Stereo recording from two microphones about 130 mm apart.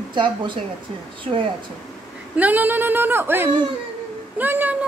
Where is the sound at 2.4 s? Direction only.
10° right (ahead or behind).